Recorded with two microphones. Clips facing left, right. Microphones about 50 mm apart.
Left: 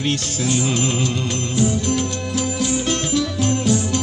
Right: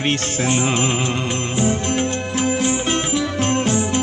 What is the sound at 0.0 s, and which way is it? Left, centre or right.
Music, right.